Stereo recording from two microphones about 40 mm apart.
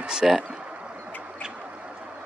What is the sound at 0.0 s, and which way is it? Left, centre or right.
Speech, centre.